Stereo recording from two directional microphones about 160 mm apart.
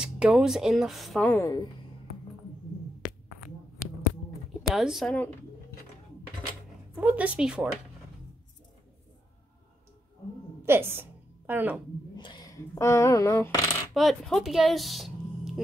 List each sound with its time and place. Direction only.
0.0 s speech: 5° right (ahead or behind)
1.3 s speech: 20° left (ahead or behind)
4.6 s speech: centre (ahead or behind)
7.0 s a woman's voice: 10° right (ahead or behind)
10.6 s a sound: 15° right (ahead or behind)
12.2 s speech: 25° left (ahead or behind)
13.9 s speech: centre (ahead or behind)